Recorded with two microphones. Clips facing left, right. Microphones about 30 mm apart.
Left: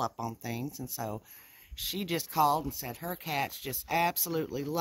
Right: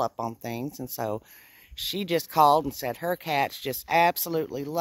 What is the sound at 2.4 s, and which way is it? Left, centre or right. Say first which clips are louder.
Speech: right 7 dB; right.